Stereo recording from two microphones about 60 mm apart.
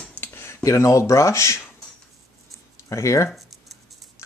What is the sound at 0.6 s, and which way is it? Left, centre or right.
Speech, left.